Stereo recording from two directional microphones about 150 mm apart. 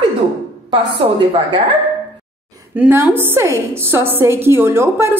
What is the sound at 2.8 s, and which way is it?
A woman's voice, 10° right (ahead or behind).